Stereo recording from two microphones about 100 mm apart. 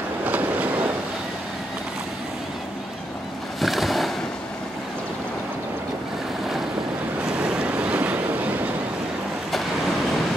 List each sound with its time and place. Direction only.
0.2 s train: 15° right (ahead or behind)
3.6 s boat: centre (ahead or behind)
7.4 s waves: 10° right (ahead or behind)